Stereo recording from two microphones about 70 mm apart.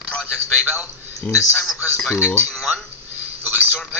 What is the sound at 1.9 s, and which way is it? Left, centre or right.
Speech, left.